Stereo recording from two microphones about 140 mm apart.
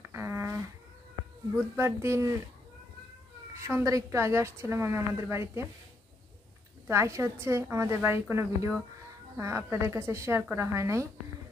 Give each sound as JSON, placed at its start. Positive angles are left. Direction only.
{"t": 0.1, "sound": "insect", "side_deg": -20}
{"t": 1.8, "sound": "a woman's voice", "side_deg": -20}
{"t": 3.5, "sound": "a woman's voice", "side_deg": -20}
{"t": 6.9, "sound": "a woman's voice", "side_deg": -20}